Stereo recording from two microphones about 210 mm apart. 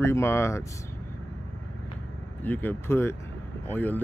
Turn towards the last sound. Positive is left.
turn(degrees=10)  # may be behind; listen again after turning